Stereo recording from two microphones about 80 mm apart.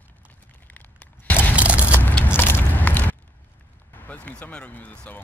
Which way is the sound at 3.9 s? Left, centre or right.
Left.